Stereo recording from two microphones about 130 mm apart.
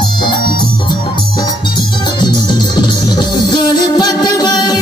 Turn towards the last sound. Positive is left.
turn(degrees=30)  # may be behind; listen again after turning